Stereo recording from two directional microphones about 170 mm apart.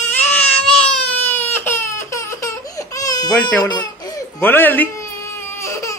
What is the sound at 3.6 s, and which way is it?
Crying, 25° left (ahead or behind).